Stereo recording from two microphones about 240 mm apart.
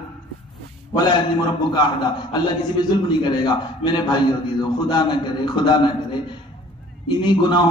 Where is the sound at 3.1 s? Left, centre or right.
Centre.